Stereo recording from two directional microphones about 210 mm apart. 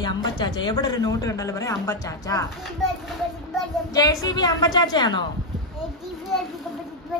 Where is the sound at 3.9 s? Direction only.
15° left (ahead or behind).